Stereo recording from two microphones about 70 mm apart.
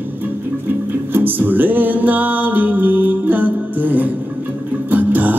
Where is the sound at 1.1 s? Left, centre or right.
Right.